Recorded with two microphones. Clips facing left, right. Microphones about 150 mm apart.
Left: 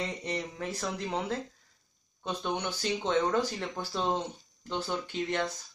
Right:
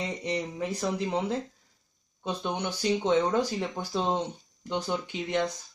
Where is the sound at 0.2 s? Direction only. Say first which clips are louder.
Right 4 dB; 10° right (ahead or behind).